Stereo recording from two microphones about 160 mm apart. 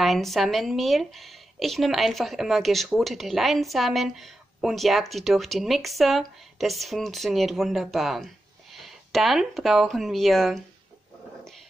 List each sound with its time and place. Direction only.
0.0 s speech: centre (ahead or behind)